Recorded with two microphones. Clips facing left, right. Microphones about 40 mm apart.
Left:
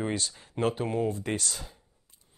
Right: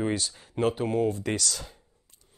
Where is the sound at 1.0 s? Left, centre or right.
Right.